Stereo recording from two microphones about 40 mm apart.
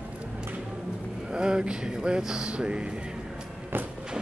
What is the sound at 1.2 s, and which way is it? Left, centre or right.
Speech, centre.